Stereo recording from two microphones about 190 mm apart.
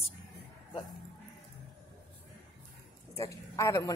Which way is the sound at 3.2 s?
15° left (ahead or behind).